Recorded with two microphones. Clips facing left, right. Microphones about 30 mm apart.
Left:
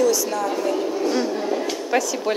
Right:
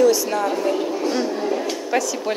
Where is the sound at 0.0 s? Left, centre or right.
Centre.